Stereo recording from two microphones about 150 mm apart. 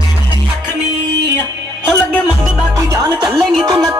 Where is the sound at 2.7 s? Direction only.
25° right (ahead or behind).